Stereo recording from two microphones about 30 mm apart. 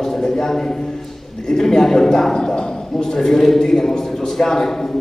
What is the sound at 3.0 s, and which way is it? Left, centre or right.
A man's voice, centre.